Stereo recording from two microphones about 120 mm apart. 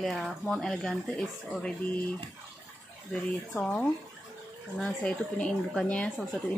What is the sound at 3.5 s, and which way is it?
Speech, 15° left (ahead or behind).